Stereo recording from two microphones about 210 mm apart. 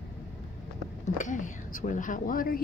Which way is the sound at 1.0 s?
35° left (ahead or behind).